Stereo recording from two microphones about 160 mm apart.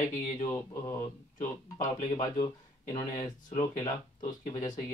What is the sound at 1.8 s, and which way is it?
Speech, 50° left (ahead or behind).